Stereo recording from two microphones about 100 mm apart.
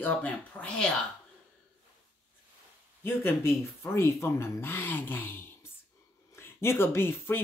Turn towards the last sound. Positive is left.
turn(degrees=25)  # may be behind; listen again after turning